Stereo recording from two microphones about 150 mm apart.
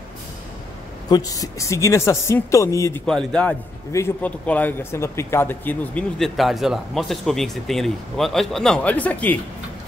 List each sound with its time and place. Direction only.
1.0 s a woman's voice: 25° left (ahead or behind)
3.1 s speech: 5° left (ahead or behind)
6.1 s speech: centre (ahead or behind)